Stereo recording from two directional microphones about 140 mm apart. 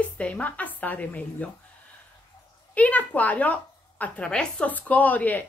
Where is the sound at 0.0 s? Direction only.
10° left (ahead or behind).